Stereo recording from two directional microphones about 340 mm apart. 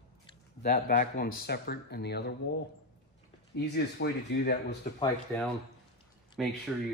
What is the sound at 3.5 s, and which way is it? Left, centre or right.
Speech, left.